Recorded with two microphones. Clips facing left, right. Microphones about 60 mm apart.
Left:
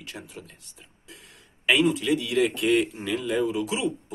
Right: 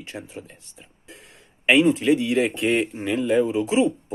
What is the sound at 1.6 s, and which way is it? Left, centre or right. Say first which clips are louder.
Speech: right 5 dB; right.